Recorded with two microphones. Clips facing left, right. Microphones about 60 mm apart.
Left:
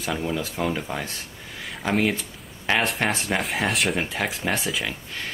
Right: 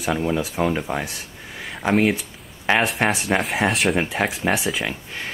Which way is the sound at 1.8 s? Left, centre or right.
Centre.